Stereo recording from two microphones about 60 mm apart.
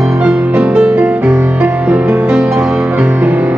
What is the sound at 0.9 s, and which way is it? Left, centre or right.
Music, right.